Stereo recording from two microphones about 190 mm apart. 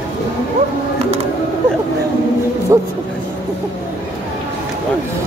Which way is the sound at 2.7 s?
15° right (ahead or behind).